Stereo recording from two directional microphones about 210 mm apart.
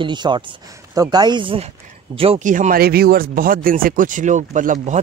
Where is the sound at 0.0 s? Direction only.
20° right (ahead or behind).